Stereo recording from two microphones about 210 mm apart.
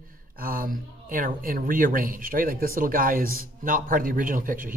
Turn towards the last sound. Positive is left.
turn(degrees=-40)  # may be behind; listen again after turning